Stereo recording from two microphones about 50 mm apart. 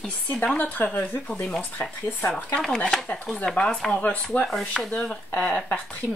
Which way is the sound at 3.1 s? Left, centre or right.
Left.